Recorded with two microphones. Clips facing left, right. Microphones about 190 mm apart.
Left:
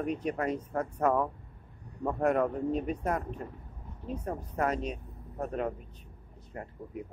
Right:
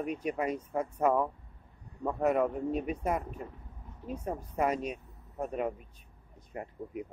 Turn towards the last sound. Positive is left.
turn(degrees=-15)  # may be behind; listen again after turning